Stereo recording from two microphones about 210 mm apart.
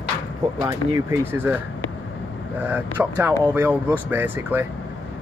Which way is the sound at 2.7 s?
10° right (ahead or behind).